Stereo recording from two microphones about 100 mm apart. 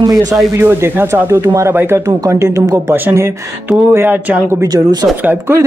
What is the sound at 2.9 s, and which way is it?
Speech, 25° right (ahead or behind).